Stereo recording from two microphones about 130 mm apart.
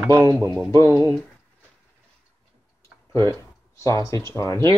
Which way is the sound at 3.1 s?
25° left (ahead or behind).